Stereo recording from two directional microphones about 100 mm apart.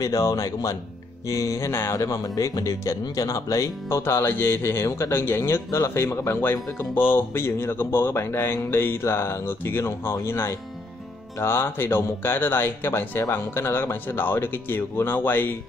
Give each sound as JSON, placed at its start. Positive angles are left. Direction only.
{"t": 0.0, "sound": "speech", "side_deg": 35}